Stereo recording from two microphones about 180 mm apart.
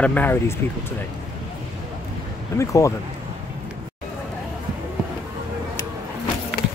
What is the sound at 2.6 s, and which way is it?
Speech, 15° left (ahead or behind).